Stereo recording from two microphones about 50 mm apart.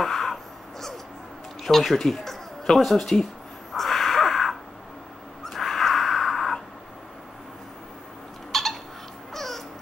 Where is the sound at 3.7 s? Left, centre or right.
Centre.